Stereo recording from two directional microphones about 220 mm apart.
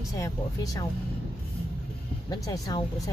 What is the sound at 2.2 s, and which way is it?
Speech, 15° left (ahead or behind).